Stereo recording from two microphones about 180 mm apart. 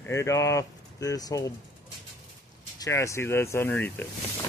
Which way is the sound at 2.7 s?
20° left (ahead or behind).